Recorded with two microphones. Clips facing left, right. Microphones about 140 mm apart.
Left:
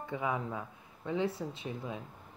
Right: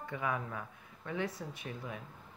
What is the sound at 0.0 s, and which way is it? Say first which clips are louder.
A woman's voice: left 2 dB; 20° left (ahead or behind).